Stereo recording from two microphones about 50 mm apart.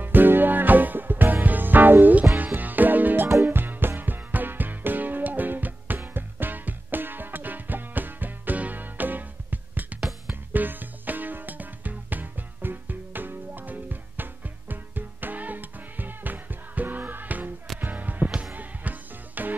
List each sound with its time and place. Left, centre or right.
0.0 s music: right
9.9 s music: centre
10.5 s music: right